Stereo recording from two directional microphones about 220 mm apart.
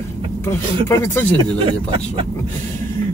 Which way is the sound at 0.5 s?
10° left (ahead or behind).